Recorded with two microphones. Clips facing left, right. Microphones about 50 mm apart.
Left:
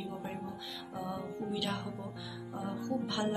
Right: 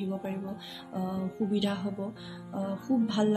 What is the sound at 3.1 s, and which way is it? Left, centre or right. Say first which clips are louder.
Speech: right 7 dB; right.